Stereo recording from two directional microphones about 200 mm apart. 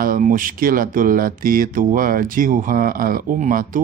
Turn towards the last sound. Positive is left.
turn(degrees=-40)  # may be behind; listen again after turning